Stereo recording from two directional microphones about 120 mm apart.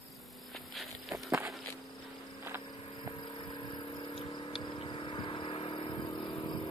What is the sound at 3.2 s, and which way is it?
Vehicle, 45° left (ahead or behind).